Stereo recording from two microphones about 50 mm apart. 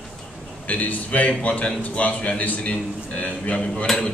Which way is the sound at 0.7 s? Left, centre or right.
Left.